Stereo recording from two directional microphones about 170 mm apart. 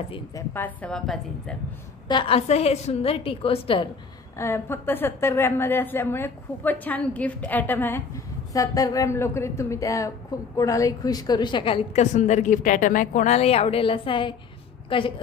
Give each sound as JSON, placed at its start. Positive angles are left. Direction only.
{"t": 0.5, "sound": "a woman's voice", "side_deg": 10}
{"t": 2.0, "sound": "a woman's voice", "side_deg": 30}
{"t": 4.4, "sound": "a woman's voice", "side_deg": 15}